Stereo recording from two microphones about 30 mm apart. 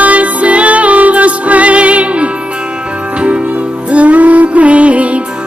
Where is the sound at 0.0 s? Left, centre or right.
Right.